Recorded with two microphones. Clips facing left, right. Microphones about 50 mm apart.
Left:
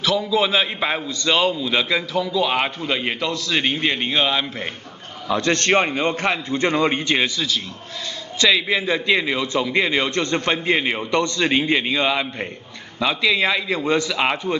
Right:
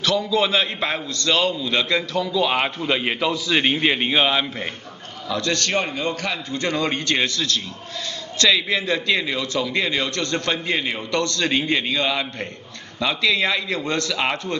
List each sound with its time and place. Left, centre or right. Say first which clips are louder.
0.0 s a man's voice: left 1 dB; centre
5.3 s a man's voice: left 4 dB; left; by 14.5 s centre